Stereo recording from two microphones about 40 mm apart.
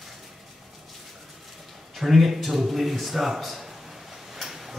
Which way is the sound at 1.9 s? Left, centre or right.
Centre.